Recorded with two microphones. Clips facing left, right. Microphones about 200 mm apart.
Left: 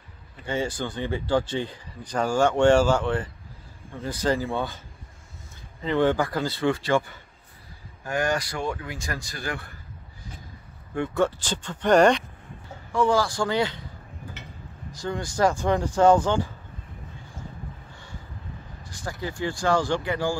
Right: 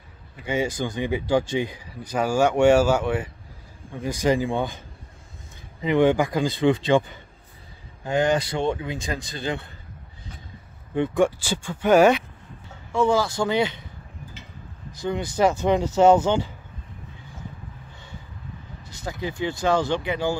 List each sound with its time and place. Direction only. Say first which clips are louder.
0.4 s speech: right 3 dB; 10° right (ahead or behind)
11.0 s speech: right 3 dB; 15° right (ahead or behind)
12.9 s speech: right 1 dB; 20° right (ahead or behind)
14.4 s a sound: left 2 dB; 65° left (ahead or behind)
14.9 s speech: right 3 dB; 20° right (ahead or behind)
18.9 s speech: right 2 dB; 20° right (ahead or behind)